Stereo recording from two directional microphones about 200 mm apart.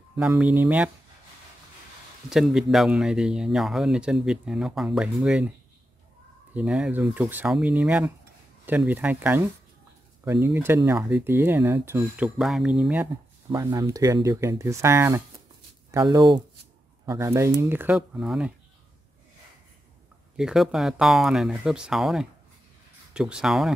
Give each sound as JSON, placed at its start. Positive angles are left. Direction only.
{"t": 0.3, "sound": "speech", "side_deg": -10}
{"t": 2.2, "sound": "speech", "side_deg": 0}
{"t": 6.5, "sound": "speech", "side_deg": -5}
{"t": 12.4, "sound": "speech", "side_deg": 0}
{"t": 20.3, "sound": "speech", "side_deg": 0}